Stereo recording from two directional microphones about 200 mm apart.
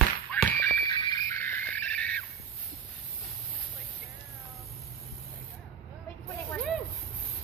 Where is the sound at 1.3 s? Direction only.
10° left (ahead or behind).